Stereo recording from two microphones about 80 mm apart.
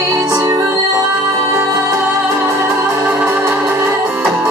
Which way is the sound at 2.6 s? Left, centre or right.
Right.